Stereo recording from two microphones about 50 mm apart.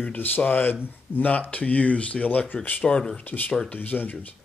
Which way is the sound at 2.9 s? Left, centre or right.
Centre.